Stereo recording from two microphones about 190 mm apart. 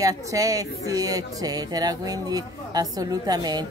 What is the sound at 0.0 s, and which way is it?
Speech, 15° right (ahead or behind).